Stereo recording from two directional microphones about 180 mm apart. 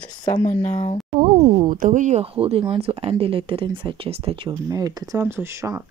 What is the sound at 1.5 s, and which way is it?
Speech, 50° right (ahead or behind).